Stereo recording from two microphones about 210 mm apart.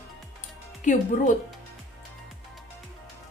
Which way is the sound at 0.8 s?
35° left (ahead or behind).